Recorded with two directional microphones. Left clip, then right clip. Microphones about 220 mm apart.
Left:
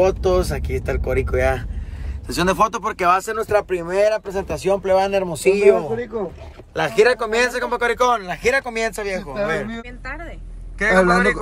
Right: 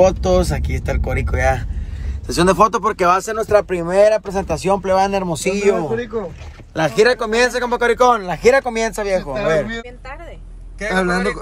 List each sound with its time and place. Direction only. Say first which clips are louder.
0.0 s speech: right 3 dB; 10° left (ahead or behind)
11.1 s speech: left 3 dB; centre (ahead or behind)